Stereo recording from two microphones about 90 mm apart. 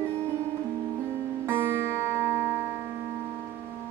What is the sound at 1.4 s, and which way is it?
Music, 25° right (ahead or behind).